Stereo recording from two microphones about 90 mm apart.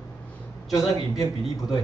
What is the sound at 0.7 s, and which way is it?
A man's voice, 40° left (ahead or behind).